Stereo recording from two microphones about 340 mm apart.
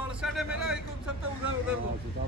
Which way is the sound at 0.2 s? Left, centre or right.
Centre.